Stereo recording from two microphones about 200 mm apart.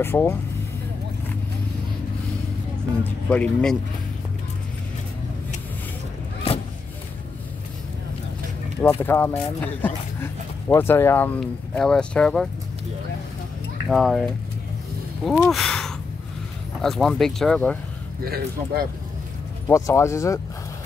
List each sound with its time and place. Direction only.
0.0 s speech: 10° left (ahead or behind)
3.0 s speech: 5° left (ahead or behind)
8.8 s speech: 10° left (ahead or behind)
13.8 s speech: centre (ahead or behind)
15.2 s speech: centre (ahead or behind)
18.2 s speech: 50° right (ahead or behind)
19.7 s speech: 15° left (ahead or behind)